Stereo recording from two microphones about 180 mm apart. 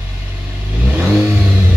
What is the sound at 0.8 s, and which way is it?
Vehicle, 10° right (ahead or behind).